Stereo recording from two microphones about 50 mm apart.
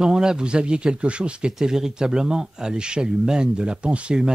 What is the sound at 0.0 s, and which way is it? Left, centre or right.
Speech, centre.